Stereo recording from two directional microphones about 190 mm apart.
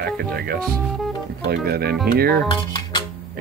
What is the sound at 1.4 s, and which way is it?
Speech, 55° right (ahead or behind).